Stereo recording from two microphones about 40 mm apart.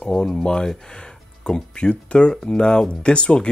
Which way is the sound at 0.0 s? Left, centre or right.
Centre.